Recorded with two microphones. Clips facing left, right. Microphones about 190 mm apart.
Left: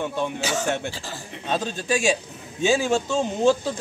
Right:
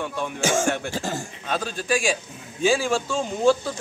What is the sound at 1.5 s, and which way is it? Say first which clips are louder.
A man's voice: left 1 dB; 25° left (ahead or behind).